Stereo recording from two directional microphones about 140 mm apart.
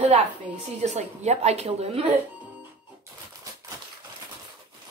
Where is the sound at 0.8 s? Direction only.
55° right (ahead or behind).